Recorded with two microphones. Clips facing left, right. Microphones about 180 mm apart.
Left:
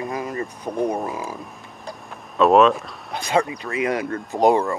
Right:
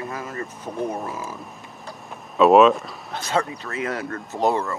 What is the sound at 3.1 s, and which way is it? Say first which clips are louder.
Speech: left 3 dB; 15° left (ahead or behind).